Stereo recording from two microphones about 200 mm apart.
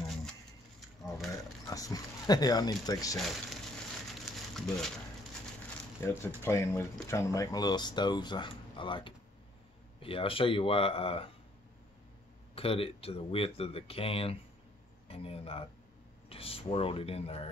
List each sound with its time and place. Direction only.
0.7 s a sound: centre (ahead or behind)
1.7 s speech: 20° left (ahead or behind)
3.2 s speech: centre (ahead or behind)
4.6 s speech: centre (ahead or behind)
6.0 s speech: 10° left (ahead or behind); by 11.2 s 30° left (ahead or behind)
12.5 s speech: 30° left (ahead or behind)